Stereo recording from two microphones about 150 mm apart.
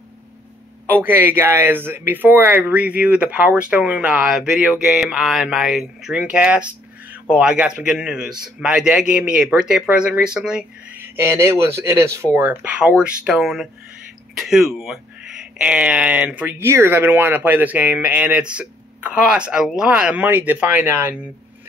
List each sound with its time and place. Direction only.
1.0 s speech: 15° right (ahead or behind)
11.1 s speech: 20° right (ahead or behind)